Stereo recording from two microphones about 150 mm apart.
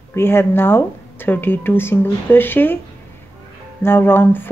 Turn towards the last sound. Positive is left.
turn(degrees=15)  # may be behind; listen again after turning